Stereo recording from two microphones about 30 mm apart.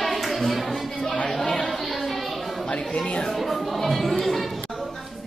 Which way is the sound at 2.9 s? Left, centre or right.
Left.